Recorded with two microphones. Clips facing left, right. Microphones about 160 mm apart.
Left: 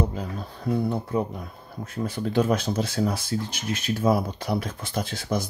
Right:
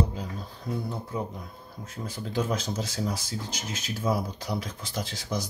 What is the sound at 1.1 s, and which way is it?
Speech, 65° left (ahead or behind).